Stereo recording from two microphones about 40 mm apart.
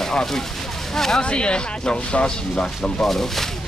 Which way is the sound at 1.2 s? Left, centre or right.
Left.